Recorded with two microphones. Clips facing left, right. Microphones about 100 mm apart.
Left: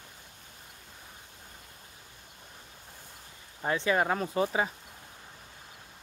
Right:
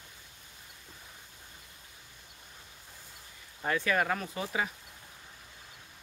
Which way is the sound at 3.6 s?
25° left (ahead or behind).